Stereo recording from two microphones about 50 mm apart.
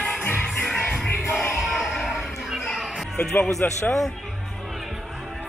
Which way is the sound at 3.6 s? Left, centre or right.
Left.